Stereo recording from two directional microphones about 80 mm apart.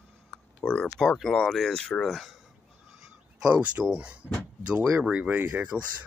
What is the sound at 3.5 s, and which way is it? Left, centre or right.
Speech, centre.